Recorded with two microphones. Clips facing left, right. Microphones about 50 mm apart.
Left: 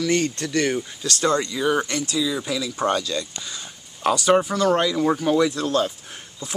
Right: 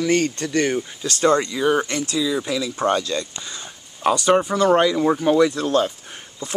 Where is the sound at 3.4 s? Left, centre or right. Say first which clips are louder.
Right 1 dB; centre.